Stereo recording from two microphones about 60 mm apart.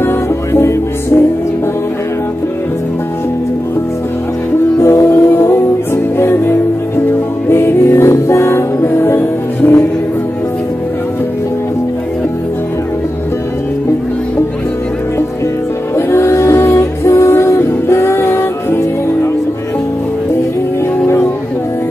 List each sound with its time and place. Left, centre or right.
0.0 s music: left
4.7 s music: left
16.1 s music: left